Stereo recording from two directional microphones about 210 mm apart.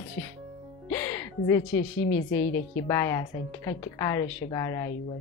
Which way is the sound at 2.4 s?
55° left (ahead or behind).